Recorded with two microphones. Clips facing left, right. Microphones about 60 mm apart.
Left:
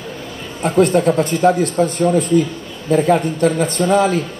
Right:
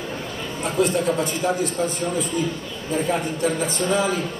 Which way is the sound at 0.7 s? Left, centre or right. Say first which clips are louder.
Left 8 dB; left.